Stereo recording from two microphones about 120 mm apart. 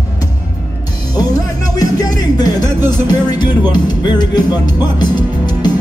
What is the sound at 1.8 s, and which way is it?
Music, 35° left (ahead or behind).